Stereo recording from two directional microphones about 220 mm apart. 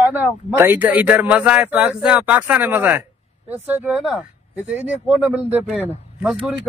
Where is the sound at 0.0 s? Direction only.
5° right (ahead or behind).